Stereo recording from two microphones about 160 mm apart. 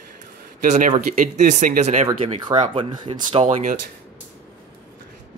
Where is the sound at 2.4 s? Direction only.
30° right (ahead or behind).